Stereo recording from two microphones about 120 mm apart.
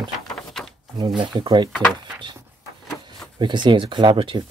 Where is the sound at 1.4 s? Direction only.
40° right (ahead or behind).